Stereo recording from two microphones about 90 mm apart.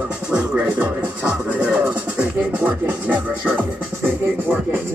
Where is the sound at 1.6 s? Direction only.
10° right (ahead or behind).